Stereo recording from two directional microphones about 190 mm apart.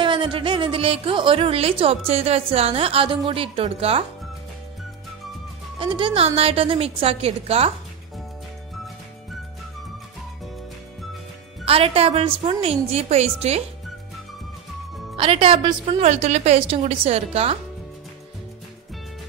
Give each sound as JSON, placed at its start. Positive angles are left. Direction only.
{"t": 0.0, "sound": "a woman's voice", "side_deg": -25}
{"t": 5.8, "sound": "a woman's voice", "side_deg": -25}
{"t": 11.6, "sound": "a woman's voice", "side_deg": -30}
{"t": 15.1, "sound": "a woman's voice", "side_deg": -30}